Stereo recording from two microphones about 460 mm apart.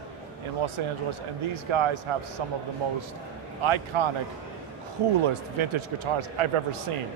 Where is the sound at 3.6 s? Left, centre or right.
Right.